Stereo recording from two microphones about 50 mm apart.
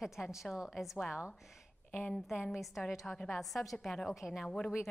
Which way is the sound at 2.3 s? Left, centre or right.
Centre.